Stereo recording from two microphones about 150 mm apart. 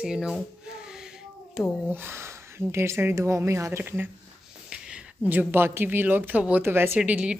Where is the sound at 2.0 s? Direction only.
15° right (ahead or behind).